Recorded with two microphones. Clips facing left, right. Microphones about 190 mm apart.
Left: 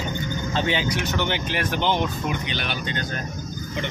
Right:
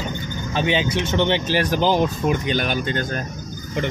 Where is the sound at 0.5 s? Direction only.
20° right (ahead or behind); by 3.0 s 45° right (ahead or behind).